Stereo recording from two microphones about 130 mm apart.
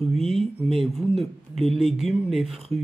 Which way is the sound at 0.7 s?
Centre (ahead or behind).